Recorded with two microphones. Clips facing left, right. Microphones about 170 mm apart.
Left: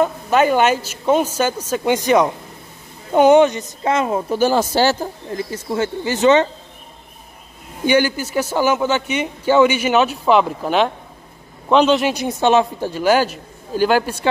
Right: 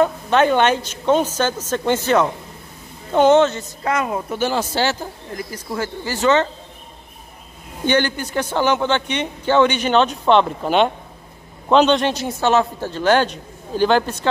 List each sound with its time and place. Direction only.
0.0 s speech: 5° left (ahead or behind); by 4.4 s 25° left (ahead or behind)
4.4 s speech: 40° left (ahead or behind)
5.3 s speech: 25° left (ahead or behind)
7.8 s speech: 10° left (ahead or behind)